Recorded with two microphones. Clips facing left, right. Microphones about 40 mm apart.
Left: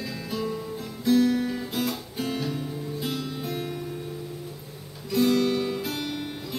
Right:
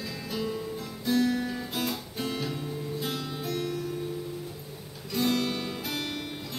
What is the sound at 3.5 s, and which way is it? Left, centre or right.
Music, centre.